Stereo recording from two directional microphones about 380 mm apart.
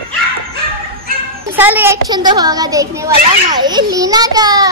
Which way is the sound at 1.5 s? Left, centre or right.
Centre.